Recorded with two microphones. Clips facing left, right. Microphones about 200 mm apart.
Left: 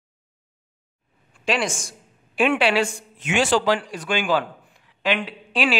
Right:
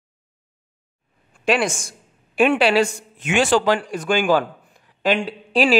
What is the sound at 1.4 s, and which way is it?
A woman's voice, 55° right (ahead or behind).